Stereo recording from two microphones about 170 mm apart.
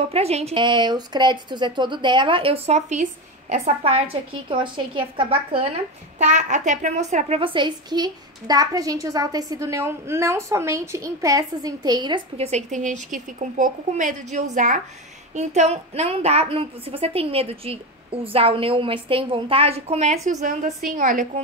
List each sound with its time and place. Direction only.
0.1 s a woman's voice: 40° right (ahead or behind)
6.1 s a woman's voice: 45° right (ahead or behind); by 12.2 s 25° right (ahead or behind)
12.4 s a woman's voice: 40° right (ahead or behind)